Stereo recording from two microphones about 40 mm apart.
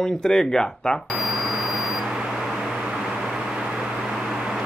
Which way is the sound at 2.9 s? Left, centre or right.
Centre.